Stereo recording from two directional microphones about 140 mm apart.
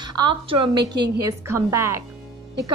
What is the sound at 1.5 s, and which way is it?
Speech, 20° right (ahead or behind).